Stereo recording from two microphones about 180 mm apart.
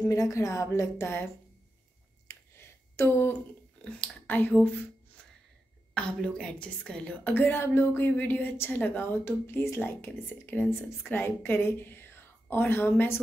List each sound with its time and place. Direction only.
0.1 s a woman's voice: 15° left (ahead or behind)
2.3 s a sound: 15° left (ahead or behind)
3.0 s a woman's voice: 15° left (ahead or behind)
5.9 s a woman's voice: 5° left (ahead or behind)